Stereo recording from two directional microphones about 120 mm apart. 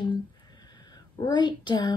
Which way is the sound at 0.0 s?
35° left (ahead or behind).